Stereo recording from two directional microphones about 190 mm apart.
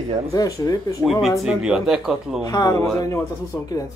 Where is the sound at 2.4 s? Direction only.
20° left (ahead or behind).